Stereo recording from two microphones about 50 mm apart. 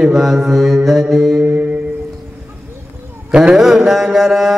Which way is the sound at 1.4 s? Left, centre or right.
Right.